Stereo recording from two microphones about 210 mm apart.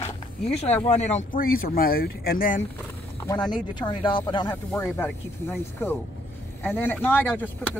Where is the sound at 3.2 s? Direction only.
20° left (ahead or behind).